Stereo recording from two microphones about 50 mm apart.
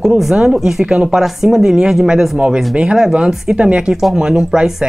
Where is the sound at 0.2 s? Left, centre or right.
Centre.